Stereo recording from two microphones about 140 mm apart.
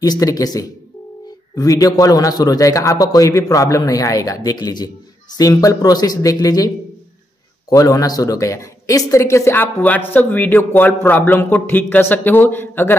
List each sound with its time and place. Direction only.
0.0 s a man's voice: 25° left (ahead or behind)
7.7 s speech: 25° left (ahead or behind)